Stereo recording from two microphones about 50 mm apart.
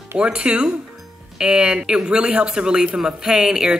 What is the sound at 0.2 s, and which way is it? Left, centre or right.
A man's voice, right.